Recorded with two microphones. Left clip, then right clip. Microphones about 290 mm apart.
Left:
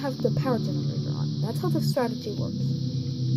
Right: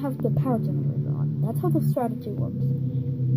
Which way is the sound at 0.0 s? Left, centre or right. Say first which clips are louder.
Left 1 dB; centre.